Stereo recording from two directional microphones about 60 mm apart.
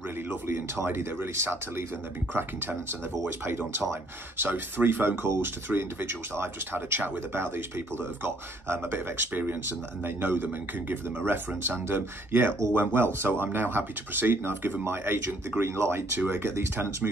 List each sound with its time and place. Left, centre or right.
0.3 s speech: right
3.4 s speech: right